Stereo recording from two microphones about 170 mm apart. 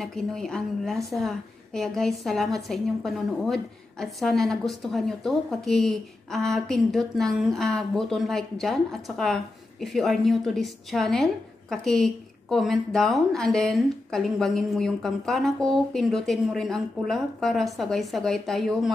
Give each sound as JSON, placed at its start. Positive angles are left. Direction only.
{"t": 0.0, "sound": "a woman's voice", "side_deg": 5}